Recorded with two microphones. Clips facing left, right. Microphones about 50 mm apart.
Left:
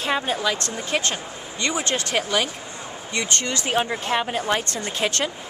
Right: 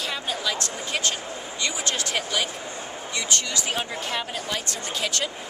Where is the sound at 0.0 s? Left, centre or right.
Left.